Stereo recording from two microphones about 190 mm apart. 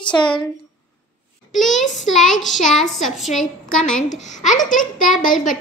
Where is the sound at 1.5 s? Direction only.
Centre (ahead or behind).